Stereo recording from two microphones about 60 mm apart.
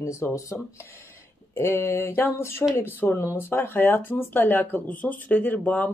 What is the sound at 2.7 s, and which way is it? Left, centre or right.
Speech, left.